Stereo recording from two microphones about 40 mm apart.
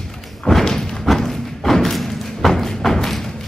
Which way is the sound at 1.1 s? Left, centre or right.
Centre.